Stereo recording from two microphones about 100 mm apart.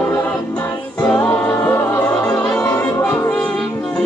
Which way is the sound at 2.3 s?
5° left (ahead or behind).